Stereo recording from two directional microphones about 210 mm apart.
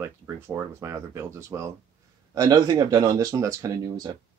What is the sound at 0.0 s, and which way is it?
Speech, 10° right (ahead or behind).